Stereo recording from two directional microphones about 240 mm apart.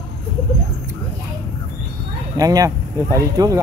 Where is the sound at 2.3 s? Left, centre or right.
Centre.